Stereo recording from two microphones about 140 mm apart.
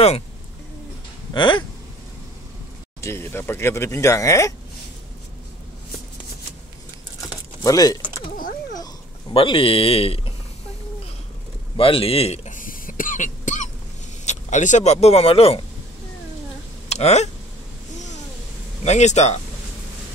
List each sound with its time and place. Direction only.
1.3 s speech: 35° left (ahead or behind)
3.0 s speech: 20° left (ahead or behind)
7.6 s speech: 25° left (ahead or behind)
9.3 s speech: 40° left (ahead or behind)
11.7 s a man's voice: 40° left (ahead or behind)
12.5 s cough: 75° left (ahead or behind)
14.2 s speech: 55° left (ahead or behind)
16.9 s speech: 50° left (ahead or behind)
17.9 s a sound: 60° left (ahead or behind)
18.9 s speech: 55° left (ahead or behind)